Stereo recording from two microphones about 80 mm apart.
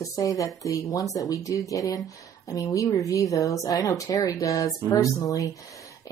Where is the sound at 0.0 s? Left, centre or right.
Left.